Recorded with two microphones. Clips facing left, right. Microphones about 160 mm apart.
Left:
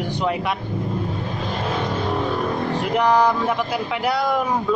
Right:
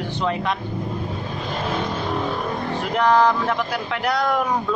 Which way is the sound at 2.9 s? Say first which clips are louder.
Right 1 dB; 10° left (ahead or behind).